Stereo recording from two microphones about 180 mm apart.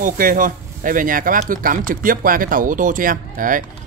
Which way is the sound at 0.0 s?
50° right (ahead or behind).